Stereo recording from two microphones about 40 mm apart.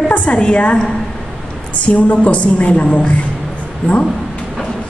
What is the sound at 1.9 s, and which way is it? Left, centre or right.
A woman's voice, left.